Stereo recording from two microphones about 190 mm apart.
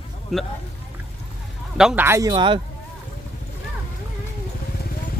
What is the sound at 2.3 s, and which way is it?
Speech, 25° right (ahead or behind).